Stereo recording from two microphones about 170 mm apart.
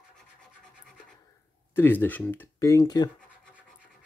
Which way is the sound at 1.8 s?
10° left (ahead or behind).